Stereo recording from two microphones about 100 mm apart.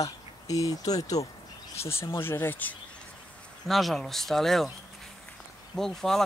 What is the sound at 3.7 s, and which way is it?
Speech, centre (ahead or behind).